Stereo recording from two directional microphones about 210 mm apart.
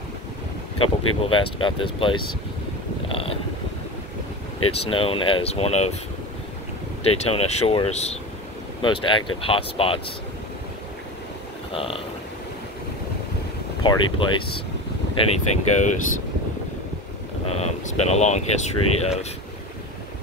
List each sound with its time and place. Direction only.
0.7 s speech: 25° left (ahead or behind)
3.1 s a sound: 25° left (ahead or behind)
4.6 s speech: 25° left (ahead or behind)
7.0 s speech: 30° left (ahead or behind)
11.7 s speech: 25° left (ahead or behind)
13.8 s speech: 25° left (ahead or behind)
17.5 s speech: 30° left (ahead or behind)